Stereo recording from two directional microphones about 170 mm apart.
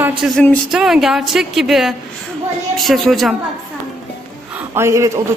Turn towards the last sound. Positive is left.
turn(degrees=-15)  # may be behind; listen again after turning